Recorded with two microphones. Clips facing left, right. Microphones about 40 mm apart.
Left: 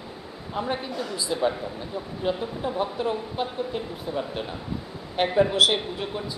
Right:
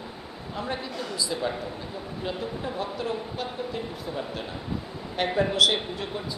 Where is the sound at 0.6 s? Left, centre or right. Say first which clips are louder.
Left 4 dB; left.